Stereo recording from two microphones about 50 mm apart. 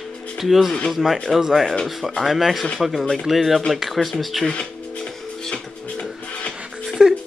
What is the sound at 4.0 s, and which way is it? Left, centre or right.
Speech, centre.